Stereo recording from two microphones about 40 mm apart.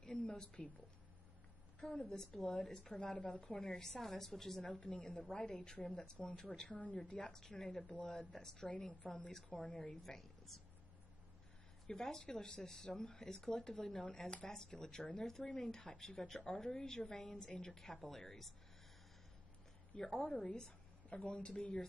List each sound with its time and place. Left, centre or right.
0.0 s a sound: centre
1.9 s speech: left
2.1 s a woman's voice: centre
3.2 s speech: left
3.6 s a woman's voice: centre
4.6 s speech: left
6.7 s speech: left
7.2 s a woman's voice: centre
7.8 s a woman's voice: left
8.6 s a woman's voice: left; by 10.6 s centre
11.9 s a woman's voice: centre
20.0 s a woman's voice: centre